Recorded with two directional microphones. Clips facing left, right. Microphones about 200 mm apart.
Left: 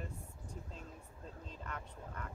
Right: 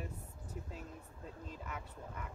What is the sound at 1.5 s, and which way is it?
Speech, 5° right (ahead or behind).